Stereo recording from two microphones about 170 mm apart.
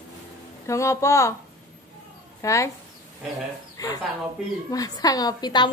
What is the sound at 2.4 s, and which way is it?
Speech, 20° left (ahead or behind).